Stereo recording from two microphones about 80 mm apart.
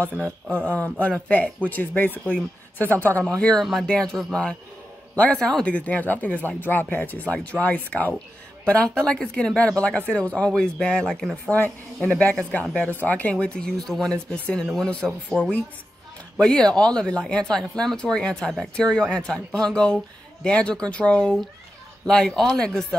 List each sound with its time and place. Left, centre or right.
0.6 s speech: centre
3.3 s speech: centre